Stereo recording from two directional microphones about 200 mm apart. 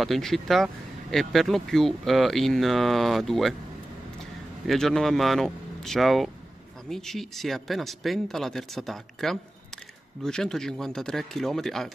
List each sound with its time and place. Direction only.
0.0 s speech: centre (ahead or behind)
4.6 s speech: centre (ahead or behind)